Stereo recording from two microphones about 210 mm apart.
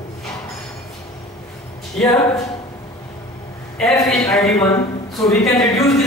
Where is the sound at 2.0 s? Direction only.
20° left (ahead or behind).